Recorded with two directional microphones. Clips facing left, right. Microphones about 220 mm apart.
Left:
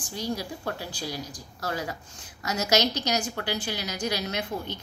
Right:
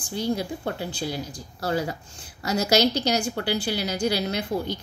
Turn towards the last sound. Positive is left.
turn(degrees=-30)  # may be behind; listen again after turning